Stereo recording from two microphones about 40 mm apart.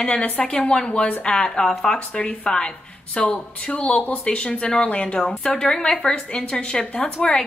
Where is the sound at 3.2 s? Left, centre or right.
Left; by 7.4 s centre.